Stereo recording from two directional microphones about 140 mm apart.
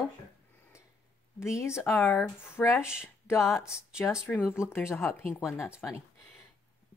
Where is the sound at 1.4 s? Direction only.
20° left (ahead or behind).